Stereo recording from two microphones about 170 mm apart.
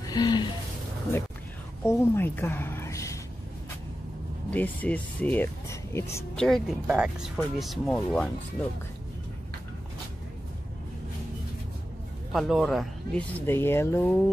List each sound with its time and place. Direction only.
0.0 s speech: 25° left (ahead or behind)
1.9 s a woman's voice: 10° left (ahead or behind)
4.5 s speech: 10° left (ahead or behind)
6.3 s speech: centre (ahead or behind)
12.3 s a man's voice: centre (ahead or behind)
13.5 s speech: 15° left (ahead or behind)